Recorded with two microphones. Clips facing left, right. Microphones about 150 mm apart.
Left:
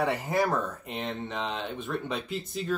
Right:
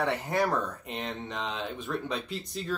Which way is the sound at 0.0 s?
5° left (ahead or behind).